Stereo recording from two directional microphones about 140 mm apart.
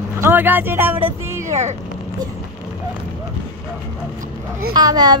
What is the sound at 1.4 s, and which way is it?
Speech, 55° right (ahead or behind).